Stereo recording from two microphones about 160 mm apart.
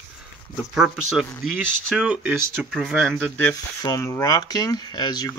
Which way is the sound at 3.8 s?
15° left (ahead or behind).